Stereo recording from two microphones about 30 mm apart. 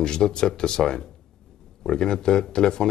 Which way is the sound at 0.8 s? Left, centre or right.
Centre.